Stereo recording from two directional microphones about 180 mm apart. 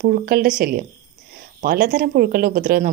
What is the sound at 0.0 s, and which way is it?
Speech, 55° right (ahead or behind).